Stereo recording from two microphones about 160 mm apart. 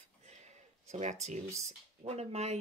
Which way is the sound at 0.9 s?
45° right (ahead or behind).